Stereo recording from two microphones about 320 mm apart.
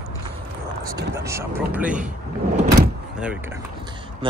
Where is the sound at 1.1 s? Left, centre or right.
Centre.